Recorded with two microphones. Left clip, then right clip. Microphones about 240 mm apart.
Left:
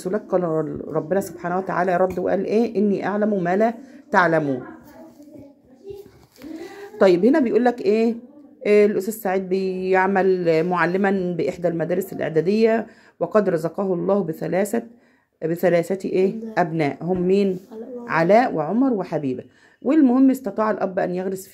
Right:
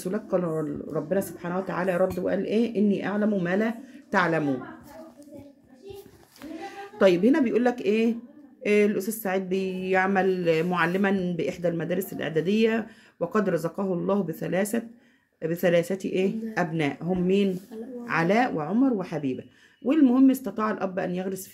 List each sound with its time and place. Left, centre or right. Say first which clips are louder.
0.0 s speech: left 5 dB; centre
7.0 s speech: left 5 dB; centre